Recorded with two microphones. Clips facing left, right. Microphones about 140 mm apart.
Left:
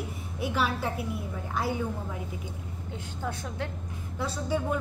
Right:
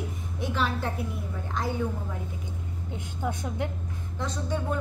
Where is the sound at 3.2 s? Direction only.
15° right (ahead or behind).